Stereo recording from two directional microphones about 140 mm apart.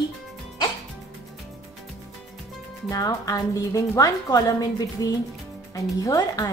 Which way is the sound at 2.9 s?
25° left (ahead or behind).